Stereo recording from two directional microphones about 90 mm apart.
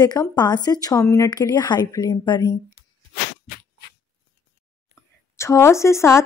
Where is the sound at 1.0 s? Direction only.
30° left (ahead or behind).